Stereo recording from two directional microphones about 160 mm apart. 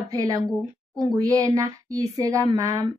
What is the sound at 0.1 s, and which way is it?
Speech, 20° right (ahead or behind).